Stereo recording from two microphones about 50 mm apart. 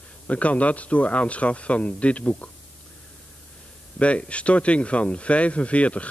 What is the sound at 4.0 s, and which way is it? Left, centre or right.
Speech, left.